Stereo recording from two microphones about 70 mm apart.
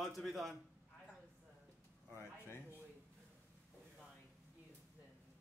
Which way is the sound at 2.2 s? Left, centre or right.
Left.